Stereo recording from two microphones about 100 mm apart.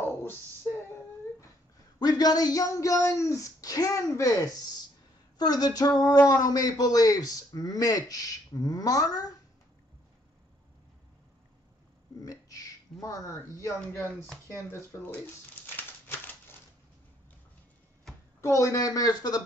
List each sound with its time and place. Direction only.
2.0 s speech: 40° left (ahead or behind)
12.2 s a sound: 35° left (ahead or behind)
13.0 s speech: 30° left (ahead or behind)
15.6 s crumpling: 25° left (ahead or behind)
18.1 s a sound: 5° left (ahead or behind)
18.4 s speech: 30° left (ahead or behind)